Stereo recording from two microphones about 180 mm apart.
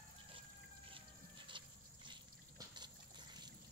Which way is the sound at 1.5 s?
25° right (ahead or behind).